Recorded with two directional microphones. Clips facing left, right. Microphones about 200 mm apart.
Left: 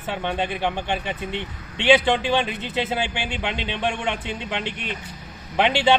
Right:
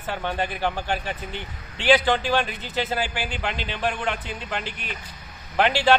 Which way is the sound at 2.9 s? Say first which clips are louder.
Left 1 dB; 5° right (ahead or behind).